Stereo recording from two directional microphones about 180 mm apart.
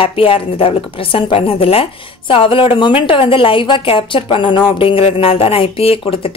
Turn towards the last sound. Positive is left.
turn(degrees=30)  # may be behind; listen again after turning